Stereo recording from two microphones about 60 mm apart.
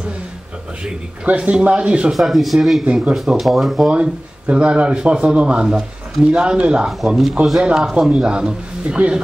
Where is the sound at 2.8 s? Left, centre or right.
Centre.